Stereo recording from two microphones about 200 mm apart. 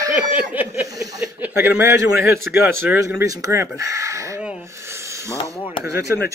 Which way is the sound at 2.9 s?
15° right (ahead or behind).